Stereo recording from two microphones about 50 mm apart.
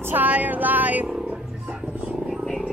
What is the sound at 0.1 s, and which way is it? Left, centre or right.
Speech, right.